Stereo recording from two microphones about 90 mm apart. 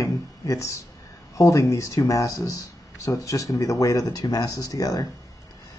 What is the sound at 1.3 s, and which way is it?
Speech, 35° left (ahead or behind).